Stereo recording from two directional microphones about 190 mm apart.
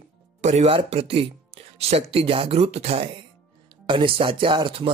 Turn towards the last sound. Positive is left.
turn(degrees=-25)  # may be behind; listen again after turning